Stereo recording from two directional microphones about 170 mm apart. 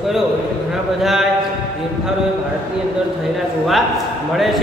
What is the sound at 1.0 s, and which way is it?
Speech, centre (ahead or behind).